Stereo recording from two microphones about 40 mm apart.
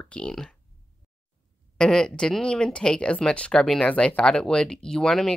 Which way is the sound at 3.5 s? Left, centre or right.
Centre.